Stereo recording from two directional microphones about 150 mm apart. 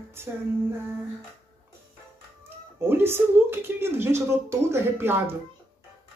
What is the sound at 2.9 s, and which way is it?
Speech, 15° right (ahead or behind).